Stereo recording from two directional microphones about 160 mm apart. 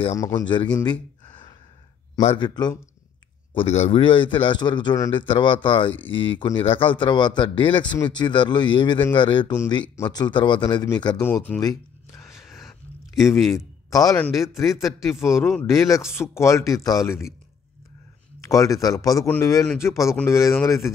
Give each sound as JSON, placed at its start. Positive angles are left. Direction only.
{"t": 0.1, "sound": "speech", "side_deg": 20}
{"t": 2.1, "sound": "speech", "side_deg": 30}
{"t": 3.5, "sound": "a man's voice", "side_deg": 40}
{"t": 11.5, "sound": "speech", "side_deg": 5}
{"t": 12.4, "sound": "a sound", "side_deg": 0}
{"t": 13.4, "sound": "speech", "side_deg": 0}
{"t": 13.8, "sound": "speech", "side_deg": 20}
{"t": 18.5, "sound": "speech", "side_deg": 20}